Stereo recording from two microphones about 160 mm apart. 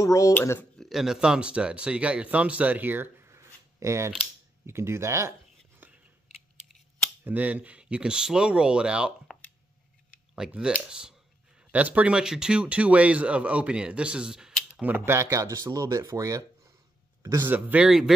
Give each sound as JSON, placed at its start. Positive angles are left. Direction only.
{"t": 0.0, "sound": "speech", "side_deg": 20}
{"t": 0.7, "sound": "speech", "side_deg": 0}
{"t": 5.8, "sound": "scissors", "side_deg": -10}
{"t": 7.2, "sound": "a man's voice", "side_deg": -10}
{"t": 17.6, "sound": "speech", "side_deg": -5}